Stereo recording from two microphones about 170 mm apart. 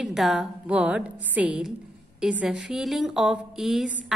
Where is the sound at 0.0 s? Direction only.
Centre (ahead or behind).